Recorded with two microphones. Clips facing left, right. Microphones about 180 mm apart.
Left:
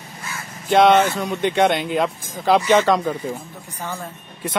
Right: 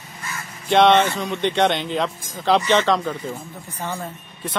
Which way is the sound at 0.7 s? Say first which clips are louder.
Left 1 dB; 5° left (ahead or behind).